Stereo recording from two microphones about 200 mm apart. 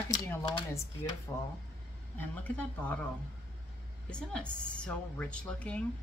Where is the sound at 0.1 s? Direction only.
10° left (ahead or behind).